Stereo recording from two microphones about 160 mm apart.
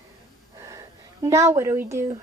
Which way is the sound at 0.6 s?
20° right (ahead or behind).